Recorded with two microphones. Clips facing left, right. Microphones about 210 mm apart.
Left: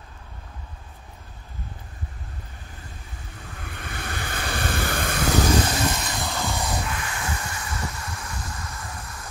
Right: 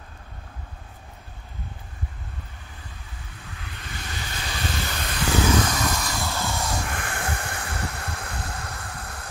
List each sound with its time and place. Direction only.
3.5 s vehicle: 50° left (ahead or behind)
6.0 s vehicle: 15° left (ahead or behind)
6.9 s vehicle: 55° right (ahead or behind)